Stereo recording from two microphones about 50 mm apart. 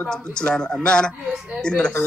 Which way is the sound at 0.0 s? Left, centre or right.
Centre.